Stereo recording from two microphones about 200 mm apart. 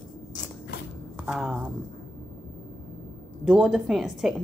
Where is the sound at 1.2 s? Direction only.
Centre (ahead or behind).